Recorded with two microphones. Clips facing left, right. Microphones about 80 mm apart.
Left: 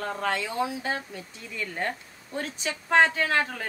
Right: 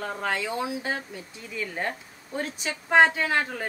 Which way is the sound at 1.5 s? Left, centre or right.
Centre.